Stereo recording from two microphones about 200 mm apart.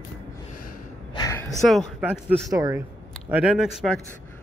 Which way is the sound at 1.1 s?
15° left (ahead or behind).